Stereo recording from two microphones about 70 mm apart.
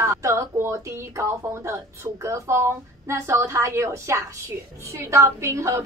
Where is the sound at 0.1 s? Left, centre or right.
Right.